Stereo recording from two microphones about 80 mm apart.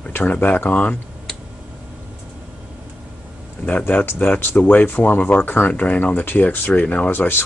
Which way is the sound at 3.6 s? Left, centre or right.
Left.